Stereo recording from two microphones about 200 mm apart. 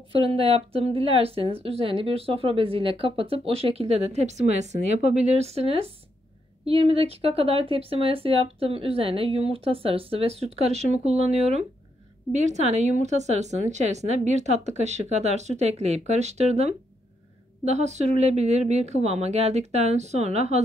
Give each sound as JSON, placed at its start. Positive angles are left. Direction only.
{"t": 0.1, "sound": "speech", "side_deg": -30}